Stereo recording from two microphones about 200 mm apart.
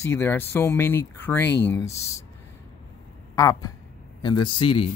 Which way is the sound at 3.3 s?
15° left (ahead or behind).